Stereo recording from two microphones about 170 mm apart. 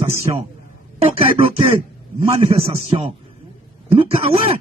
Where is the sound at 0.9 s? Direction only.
35° right (ahead or behind).